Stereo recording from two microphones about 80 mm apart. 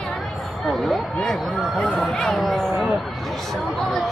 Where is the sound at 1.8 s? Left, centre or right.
Centre.